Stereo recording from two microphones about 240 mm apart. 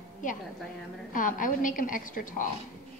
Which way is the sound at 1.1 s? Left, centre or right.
Left.